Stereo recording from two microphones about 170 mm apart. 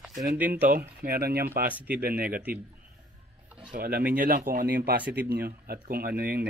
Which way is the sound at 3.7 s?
65° right (ahead or behind).